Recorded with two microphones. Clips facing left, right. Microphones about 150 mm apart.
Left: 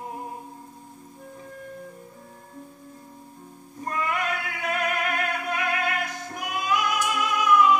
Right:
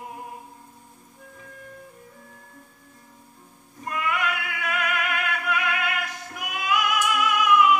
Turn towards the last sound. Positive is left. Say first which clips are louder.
# even
turn(degrees=35)  # may be behind; listen again after turning